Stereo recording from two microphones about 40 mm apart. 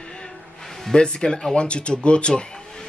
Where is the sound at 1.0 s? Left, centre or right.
Left.